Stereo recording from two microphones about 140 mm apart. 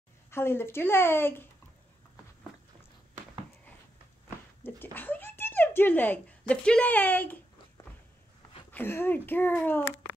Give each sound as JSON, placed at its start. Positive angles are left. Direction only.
{"t": 0.3, "sound": "speech", "side_deg": 15}
{"t": 4.9, "sound": "a woman's voice", "side_deg": 15}
{"t": 8.7, "sound": "speech", "side_deg": 15}